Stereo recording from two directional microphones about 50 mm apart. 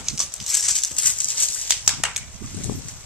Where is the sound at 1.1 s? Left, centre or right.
Left.